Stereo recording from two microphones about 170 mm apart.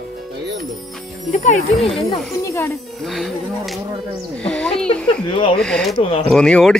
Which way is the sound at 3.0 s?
Centre (ahead or behind).